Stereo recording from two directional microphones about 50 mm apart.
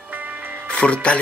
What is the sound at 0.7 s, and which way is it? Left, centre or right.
Music, left.